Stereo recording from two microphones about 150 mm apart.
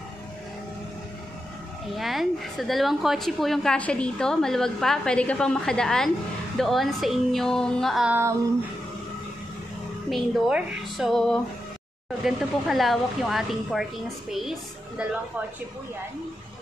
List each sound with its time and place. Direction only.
2.0 s a woman's voice: centre (ahead or behind)
8.1 s a sound: 15° right (ahead or behind)
10.0 s a woman's voice: centre (ahead or behind)